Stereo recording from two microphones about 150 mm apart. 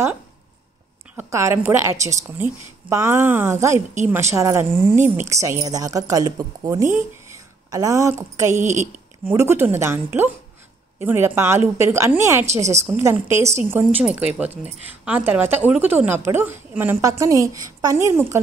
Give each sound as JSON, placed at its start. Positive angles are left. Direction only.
{"t": 1.1, "sound": "a woman's voice", "side_deg": -15}
{"t": 8.5, "sound": "speech", "side_deg": -50}
{"t": 9.2, "sound": "a woman's voice", "side_deg": -15}